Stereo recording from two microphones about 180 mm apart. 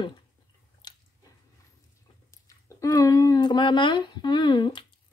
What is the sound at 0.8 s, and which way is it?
Squish, 25° left (ahead or behind).